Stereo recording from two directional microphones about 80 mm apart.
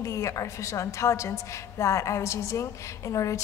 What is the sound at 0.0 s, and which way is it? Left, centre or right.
A woman's voice, left.